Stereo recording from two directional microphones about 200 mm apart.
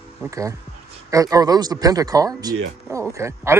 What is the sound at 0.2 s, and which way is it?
Speech, 15° right (ahead or behind).